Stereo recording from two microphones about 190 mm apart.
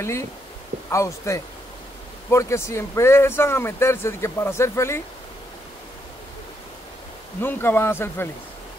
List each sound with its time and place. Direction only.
0.0 s speech: 15° left (ahead or behind)
7.3 s speech: 10° left (ahead or behind)